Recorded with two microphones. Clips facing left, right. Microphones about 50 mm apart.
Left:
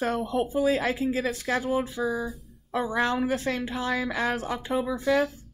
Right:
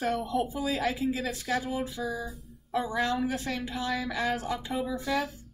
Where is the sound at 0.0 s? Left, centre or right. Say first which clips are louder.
Left 2 dB; left.